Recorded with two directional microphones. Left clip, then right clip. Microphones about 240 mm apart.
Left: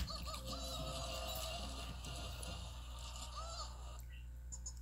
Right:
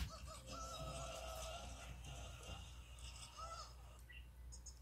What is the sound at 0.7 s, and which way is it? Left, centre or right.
Music, left.